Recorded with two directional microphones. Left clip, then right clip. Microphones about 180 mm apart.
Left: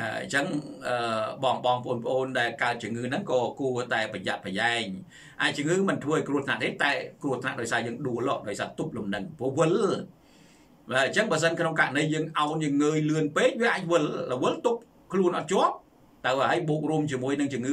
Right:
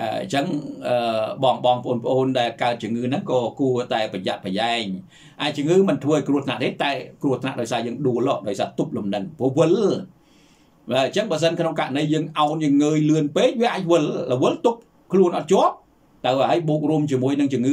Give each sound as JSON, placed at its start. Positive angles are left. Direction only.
{"t": 0.0, "sound": "speech", "side_deg": -20}